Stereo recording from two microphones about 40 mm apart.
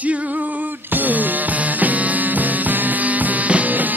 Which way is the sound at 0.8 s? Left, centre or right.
Right.